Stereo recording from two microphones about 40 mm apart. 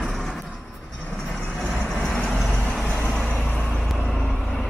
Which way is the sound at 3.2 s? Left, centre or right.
Left.